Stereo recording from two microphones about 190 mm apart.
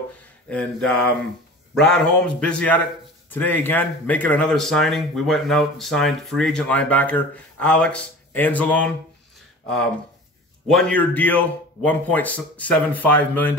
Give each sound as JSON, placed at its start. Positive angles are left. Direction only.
{"t": 0.5, "sound": "speech", "side_deg": 5}
{"t": 10.7, "sound": "speech", "side_deg": 5}